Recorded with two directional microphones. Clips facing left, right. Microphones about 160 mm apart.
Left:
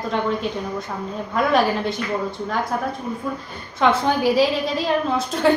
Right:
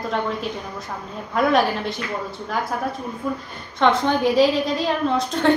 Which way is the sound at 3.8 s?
5° left (ahead or behind).